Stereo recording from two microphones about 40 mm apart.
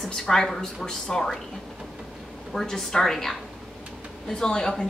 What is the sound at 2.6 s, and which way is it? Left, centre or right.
A woman's voice, centre.